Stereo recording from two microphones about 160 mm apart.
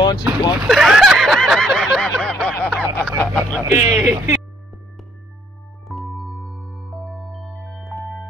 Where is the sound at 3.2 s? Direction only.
10° left (ahead or behind).